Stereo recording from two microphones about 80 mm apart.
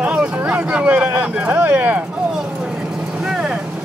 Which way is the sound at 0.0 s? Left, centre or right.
Centre.